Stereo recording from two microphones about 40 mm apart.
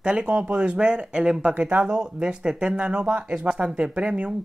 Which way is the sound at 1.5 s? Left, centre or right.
Right.